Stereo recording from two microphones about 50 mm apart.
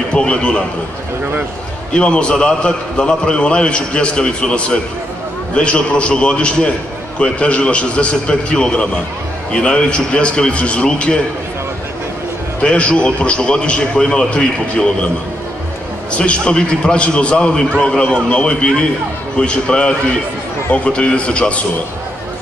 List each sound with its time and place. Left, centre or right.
0.1 s a man's voice: left
2.0 s a man's voice: centre
12.6 s a man's voice: left
16.2 s a man's voice: left